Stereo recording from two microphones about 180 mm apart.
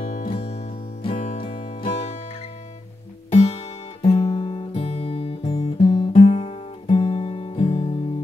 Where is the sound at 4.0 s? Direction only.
30° left (ahead or behind).